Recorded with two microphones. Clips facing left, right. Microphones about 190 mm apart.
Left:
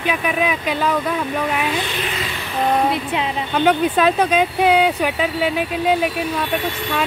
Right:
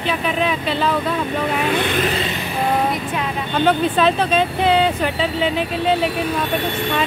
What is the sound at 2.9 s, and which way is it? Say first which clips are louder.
Speech: left 1 dB; 25° left (ahead or behind).